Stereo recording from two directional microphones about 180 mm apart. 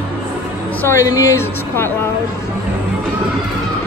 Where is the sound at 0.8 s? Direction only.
15° left (ahead or behind).